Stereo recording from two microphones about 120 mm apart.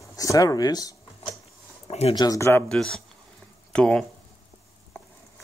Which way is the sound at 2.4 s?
20° left (ahead or behind).